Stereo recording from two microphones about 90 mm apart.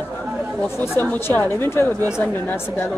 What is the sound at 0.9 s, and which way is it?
Speech, 25° left (ahead or behind).